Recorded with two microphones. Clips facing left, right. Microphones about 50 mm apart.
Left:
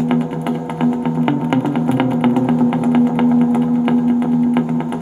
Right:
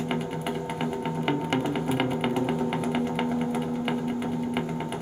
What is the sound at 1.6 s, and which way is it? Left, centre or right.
Music, centre.